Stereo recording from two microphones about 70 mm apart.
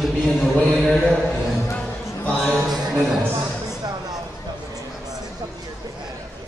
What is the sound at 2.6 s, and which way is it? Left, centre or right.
Speech, centre.